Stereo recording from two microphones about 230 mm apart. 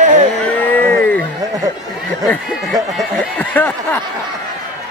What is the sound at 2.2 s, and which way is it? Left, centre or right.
Speech, centre.